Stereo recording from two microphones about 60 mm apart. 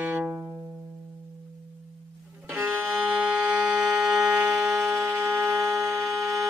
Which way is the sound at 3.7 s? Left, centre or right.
Centre.